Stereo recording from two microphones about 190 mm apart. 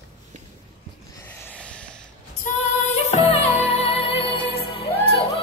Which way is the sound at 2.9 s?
35° left (ahead or behind).